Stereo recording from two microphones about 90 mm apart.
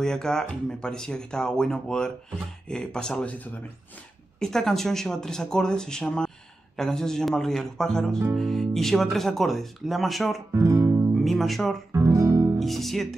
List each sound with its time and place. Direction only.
0.0 s speech: 5° left (ahead or behind)
10.5 s music: 30° right (ahead or behind)
11.2 s speech: centre (ahead or behind)
11.9 s guitar: 30° right (ahead or behind)
12.5 s speech: centre (ahead or behind)